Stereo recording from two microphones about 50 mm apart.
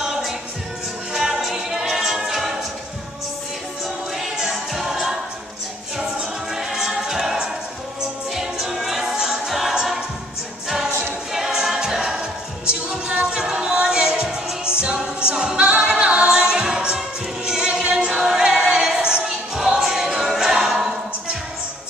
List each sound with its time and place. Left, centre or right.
1.1 s music: centre
4.2 s music: centre
6.5 s choir: centre
8.4 s music: centre
9.5 s choir: centre
11.3 s a capella: centre
13.4 s music: centre
15.8 s a capella: centre
17.5 s music: centre
17.9 s choir: centre
19.8 s a capella: centre